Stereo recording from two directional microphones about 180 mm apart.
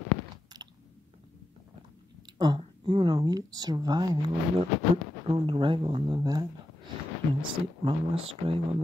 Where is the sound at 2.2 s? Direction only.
25° right (ahead or behind).